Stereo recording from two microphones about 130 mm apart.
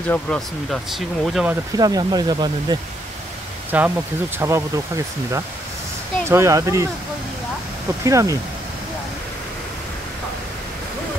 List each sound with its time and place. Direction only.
0.1 s speech: 5° left (ahead or behind)
1.8 s speech: 30° right (ahead or behind)
3.7 s speech: 10° right (ahead or behind)
4.4 s speech: 20° right (ahead or behind)
8.0 s speech: 25° right (ahead or behind)